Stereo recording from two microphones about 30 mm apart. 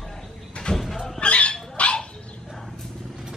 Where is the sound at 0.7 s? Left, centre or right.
Left.